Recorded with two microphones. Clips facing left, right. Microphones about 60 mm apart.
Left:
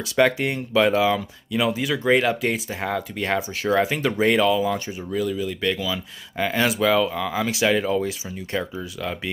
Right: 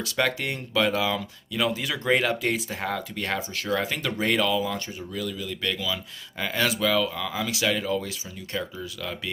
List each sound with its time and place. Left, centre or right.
0.0 s speech: centre
1.8 s speech: centre; by 8.1 s left